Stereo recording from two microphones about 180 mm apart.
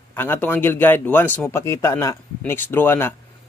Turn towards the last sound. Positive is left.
turn(degrees=10)  # may be behind; listen again after turning